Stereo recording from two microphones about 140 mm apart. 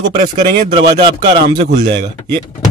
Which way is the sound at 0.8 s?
35° right (ahead or behind).